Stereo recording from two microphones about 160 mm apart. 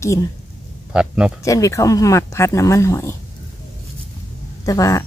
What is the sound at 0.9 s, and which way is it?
Speech, 5° right (ahead or behind).